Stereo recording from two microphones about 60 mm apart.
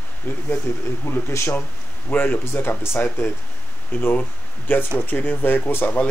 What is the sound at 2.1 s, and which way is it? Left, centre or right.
Speech, left.